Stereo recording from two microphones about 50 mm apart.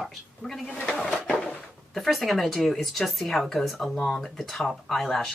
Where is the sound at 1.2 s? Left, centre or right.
Left.